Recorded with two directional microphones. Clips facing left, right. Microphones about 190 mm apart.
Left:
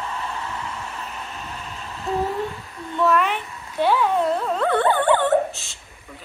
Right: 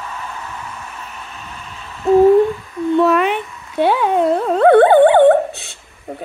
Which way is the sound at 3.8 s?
60° right (ahead or behind).